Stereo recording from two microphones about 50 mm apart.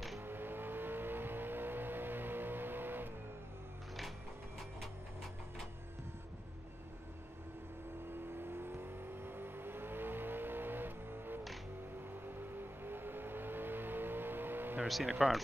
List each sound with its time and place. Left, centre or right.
0.2 s vehicle: right
8.4 s vehicle: right
12.4 s vehicle: right
15.1 s speech: centre